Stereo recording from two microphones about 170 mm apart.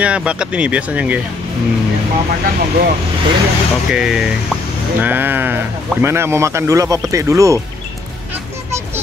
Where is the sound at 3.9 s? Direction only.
5° right (ahead or behind).